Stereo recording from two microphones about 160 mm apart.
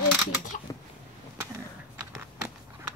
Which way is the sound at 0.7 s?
20° left (ahead or behind).